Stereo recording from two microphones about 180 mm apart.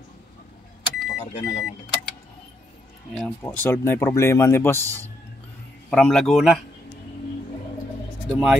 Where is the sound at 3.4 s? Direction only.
10° left (ahead or behind).